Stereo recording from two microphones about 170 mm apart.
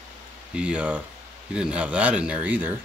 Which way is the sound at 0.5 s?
5° right (ahead or behind).